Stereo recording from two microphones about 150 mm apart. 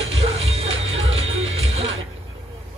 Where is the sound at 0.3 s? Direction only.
45° right (ahead or behind).